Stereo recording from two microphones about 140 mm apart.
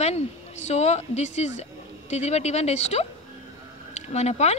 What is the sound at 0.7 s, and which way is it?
Speech, 50° left (ahead or behind).